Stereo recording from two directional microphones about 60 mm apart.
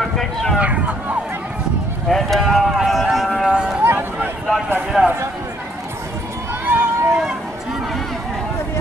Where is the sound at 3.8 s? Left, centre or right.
Right.